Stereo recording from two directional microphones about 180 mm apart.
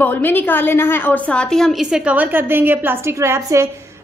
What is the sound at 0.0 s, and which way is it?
A woman's voice, 10° left (ahead or behind).